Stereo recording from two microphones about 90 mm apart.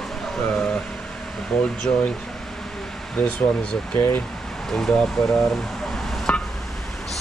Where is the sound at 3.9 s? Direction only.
20° left (ahead or behind).